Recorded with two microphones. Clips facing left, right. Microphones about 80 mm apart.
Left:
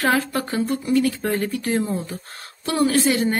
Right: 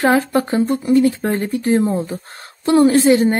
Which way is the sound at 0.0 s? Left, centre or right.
Right.